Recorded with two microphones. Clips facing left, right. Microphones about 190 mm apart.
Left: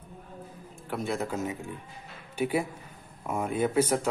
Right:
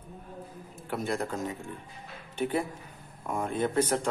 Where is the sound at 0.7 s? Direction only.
Centre (ahead or behind).